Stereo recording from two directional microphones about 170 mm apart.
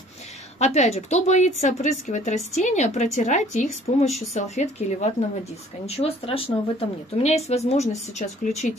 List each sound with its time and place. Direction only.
0.6 s speech: 40° left (ahead or behind)